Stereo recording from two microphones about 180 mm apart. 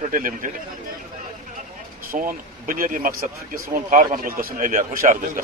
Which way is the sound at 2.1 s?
50° right (ahead or behind).